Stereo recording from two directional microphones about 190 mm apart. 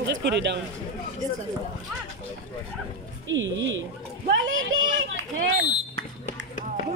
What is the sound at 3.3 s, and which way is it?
Speech, 80° right.